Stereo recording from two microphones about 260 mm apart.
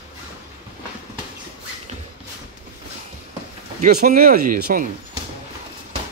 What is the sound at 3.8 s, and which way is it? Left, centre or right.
Speech, right.